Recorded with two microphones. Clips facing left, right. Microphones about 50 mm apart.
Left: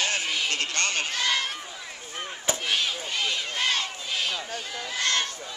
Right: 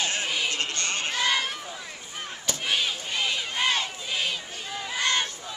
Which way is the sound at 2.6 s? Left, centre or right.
Centre.